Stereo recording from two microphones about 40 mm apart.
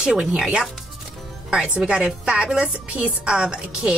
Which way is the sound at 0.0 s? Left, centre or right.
Centre.